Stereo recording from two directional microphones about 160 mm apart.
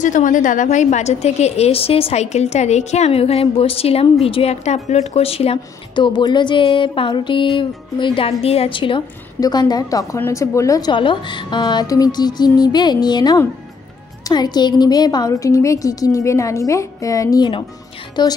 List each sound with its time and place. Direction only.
0.0 s a woman's voice: 55° left (ahead or behind); by 18.3 s 25° left (ahead or behind)